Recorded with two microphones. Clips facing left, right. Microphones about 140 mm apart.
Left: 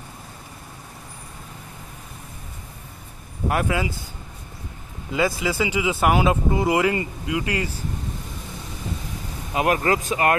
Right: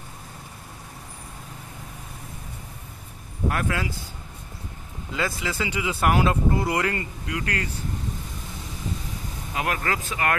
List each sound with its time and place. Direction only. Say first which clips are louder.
3.5 s speech: left 7 dB; 10° left (ahead or behind)
5.1 s speech: left 6 dB; 10° left (ahead or behind)
9.5 s speech: left 7 dB; 20° left (ahead or behind)